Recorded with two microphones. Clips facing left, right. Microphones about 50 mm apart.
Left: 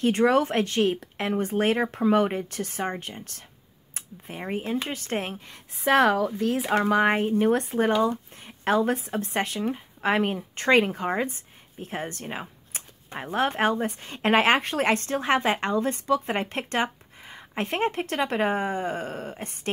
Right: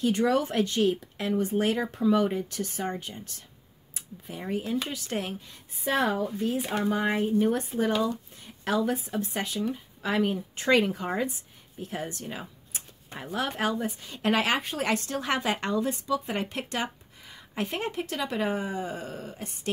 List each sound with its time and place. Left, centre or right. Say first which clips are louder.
0.0 s a woman's voice: left 4 dB; left
5.9 s speech: left 6 dB; left
14.6 s speech: left 5 dB; left
14.9 s a woman's voice: left 5 dB; left